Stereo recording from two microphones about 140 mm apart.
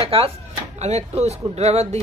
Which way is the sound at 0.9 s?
55° right (ahead or behind).